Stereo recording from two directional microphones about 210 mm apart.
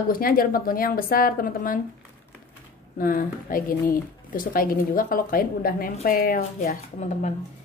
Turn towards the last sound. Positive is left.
turn(degrees=35)  # may be behind; listen again after turning